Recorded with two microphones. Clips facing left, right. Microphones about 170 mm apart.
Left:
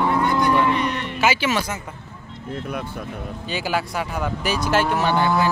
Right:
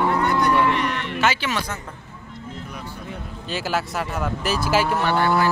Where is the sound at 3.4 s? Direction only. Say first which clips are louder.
Even; centre (ahead or behind).